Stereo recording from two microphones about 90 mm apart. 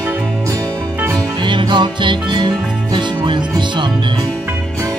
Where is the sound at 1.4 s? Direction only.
60° right (ahead or behind).